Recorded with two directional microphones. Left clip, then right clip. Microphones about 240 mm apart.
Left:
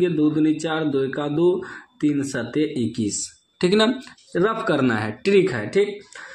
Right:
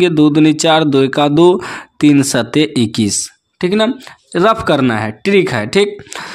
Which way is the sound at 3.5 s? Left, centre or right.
Right.